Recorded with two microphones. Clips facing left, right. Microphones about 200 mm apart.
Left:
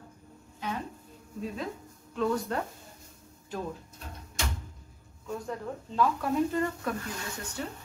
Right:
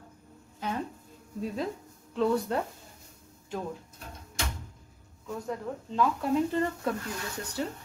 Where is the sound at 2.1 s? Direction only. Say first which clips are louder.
Right 2 dB; 15° right (ahead or behind).